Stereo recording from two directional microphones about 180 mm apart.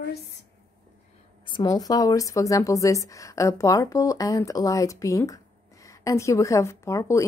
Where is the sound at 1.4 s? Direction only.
25° left (ahead or behind).